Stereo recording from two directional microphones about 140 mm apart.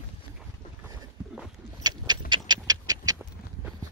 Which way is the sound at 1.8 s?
30° right (ahead or behind).